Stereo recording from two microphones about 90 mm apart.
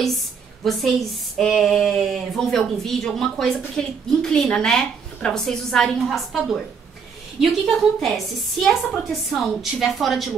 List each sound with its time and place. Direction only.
0.7 s speech: centre (ahead or behind)